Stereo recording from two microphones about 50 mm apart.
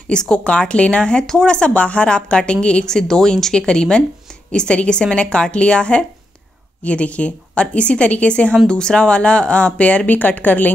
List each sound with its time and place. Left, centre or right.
0.1 s speech: centre; by 10.7 s left